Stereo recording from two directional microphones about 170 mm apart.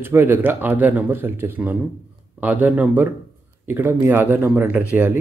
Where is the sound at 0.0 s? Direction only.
15° right (ahead or behind).